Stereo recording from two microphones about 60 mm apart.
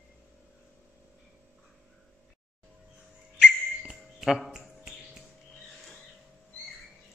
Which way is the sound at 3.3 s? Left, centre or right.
Centre.